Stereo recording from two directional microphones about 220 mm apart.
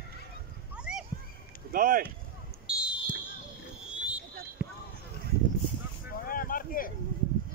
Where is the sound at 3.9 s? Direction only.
5° right (ahead or behind).